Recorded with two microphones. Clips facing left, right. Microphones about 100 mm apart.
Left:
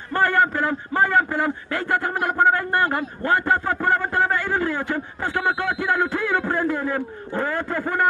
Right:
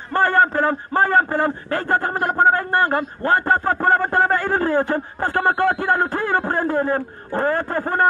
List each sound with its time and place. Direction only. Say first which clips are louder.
0.1 s a man's voice: right 3 dB; 35° right (ahead or behind)